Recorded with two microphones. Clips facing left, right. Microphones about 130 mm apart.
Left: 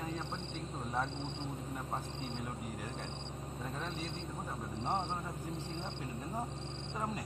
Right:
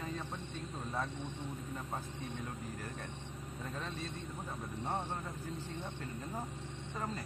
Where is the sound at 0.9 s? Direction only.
25° left (ahead or behind).